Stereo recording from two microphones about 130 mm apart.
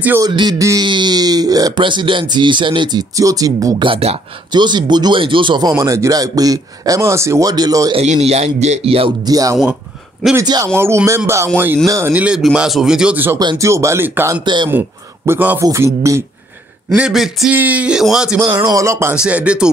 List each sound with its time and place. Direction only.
0.3 s speech: 35° right (ahead or behind)
0.6 s speech: 25° right (ahead or behind)
0.8 s speech: 35° right (ahead or behind)
3.8 s speech: 50° right (ahead or behind)
4.5 s speech: 35° right (ahead or behind)
5.8 s speech: 25° right (ahead or behind)
7.9 s a man's voice: 55° right (ahead or behind)
9.2 s speech: 30° right (ahead or behind)
13.4 s speech: 30° right (ahead or behind)
14.4 s speech: 35° right (ahead or behind)
14.7 s a man's voice: 15° right (ahead or behind)
16.9 s speech: 5° right (ahead or behind)
18.4 s speech: 25° right (ahead or behind)
19.1 s speech: 10° right (ahead or behind)